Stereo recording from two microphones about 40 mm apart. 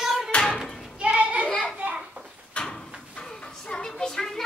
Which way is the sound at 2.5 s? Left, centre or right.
Left.